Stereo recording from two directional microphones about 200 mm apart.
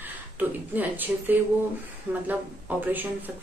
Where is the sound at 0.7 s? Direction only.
10° right (ahead or behind).